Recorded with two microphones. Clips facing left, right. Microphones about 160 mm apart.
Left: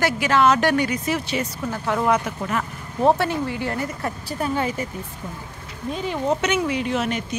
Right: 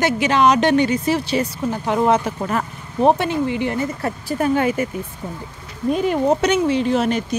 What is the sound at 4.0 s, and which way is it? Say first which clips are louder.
Speech: right 5 dB; 45° right (ahead or behind).